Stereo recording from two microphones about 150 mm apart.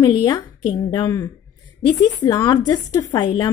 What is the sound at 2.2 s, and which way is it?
Speech, 25° left (ahead or behind).